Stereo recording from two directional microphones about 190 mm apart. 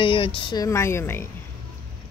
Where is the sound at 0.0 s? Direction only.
25° left (ahead or behind); by 1.3 s 10° left (ahead or behind).